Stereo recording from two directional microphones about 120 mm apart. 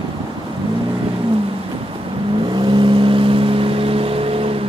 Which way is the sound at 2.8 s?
45° right (ahead or behind).